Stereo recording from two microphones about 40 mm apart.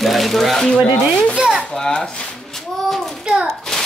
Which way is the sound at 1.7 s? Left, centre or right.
Centre.